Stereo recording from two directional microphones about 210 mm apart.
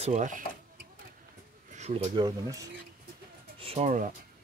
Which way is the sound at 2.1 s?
20° right (ahead or behind).